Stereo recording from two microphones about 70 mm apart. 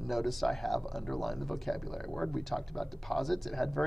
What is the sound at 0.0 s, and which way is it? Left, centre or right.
Speech, centre.